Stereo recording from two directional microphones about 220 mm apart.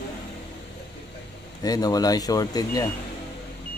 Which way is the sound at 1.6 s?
15° left (ahead or behind).